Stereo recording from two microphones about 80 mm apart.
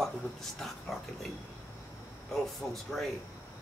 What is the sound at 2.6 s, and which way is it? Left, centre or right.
Speech, centre.